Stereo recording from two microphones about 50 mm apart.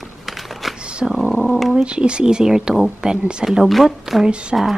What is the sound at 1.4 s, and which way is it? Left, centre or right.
Speech, centre.